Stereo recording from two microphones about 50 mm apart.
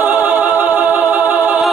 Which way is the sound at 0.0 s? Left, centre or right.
Right.